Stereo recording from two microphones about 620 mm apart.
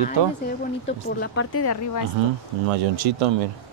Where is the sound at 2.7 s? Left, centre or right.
Right.